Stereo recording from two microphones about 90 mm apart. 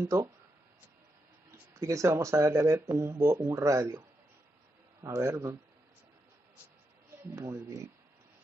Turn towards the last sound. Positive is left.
turn(degrees=-30)  # may be behind; listen again after turning